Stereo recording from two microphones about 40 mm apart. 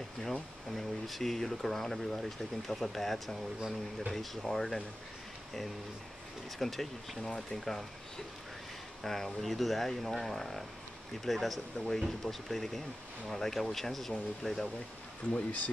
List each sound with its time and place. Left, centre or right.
0.2 s speech: centre
6.6 s speech: centre
9.0 s speech: centre
15.3 s speech: left